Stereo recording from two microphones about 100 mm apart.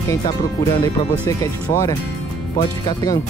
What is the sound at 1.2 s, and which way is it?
Speech, 40° left (ahead or behind).